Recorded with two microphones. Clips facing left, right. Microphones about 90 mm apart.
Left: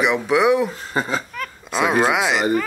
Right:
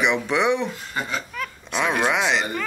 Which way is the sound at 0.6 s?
35° left (ahead or behind).